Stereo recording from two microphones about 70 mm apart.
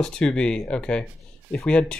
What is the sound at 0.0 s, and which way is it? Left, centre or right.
Speech, centre.